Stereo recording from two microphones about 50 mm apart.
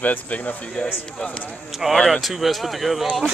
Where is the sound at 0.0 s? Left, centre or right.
Left.